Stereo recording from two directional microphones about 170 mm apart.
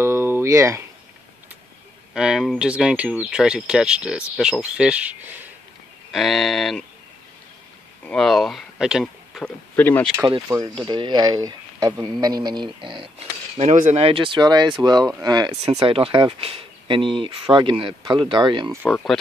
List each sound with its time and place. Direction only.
0.0 s a sound: 15° right (ahead or behind)
2.1 s speech: 5° right (ahead or behind)
6.1 s speech: centre (ahead or behind)
8.0 s speech: 5° left (ahead or behind)
10.8 s speech: 25° right (ahead or behind)
15.5 s speech: 35° right (ahead or behind)